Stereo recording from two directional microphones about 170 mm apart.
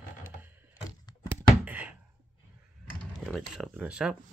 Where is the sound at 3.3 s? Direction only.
Centre (ahead or behind).